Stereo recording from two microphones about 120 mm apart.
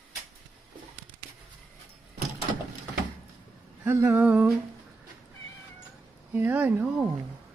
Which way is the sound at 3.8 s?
25° right (ahead or behind).